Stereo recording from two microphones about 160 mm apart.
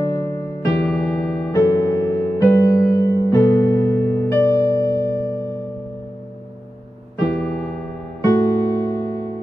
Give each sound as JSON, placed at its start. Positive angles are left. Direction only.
{"t": 0.0, "sound": "music", "side_deg": 20}
{"t": 0.8, "sound": "music", "side_deg": 5}
{"t": 1.5, "sound": "music", "side_deg": 20}
{"t": 7.3, "sound": "music", "side_deg": 5}
{"t": 8.2, "sound": "music", "side_deg": 20}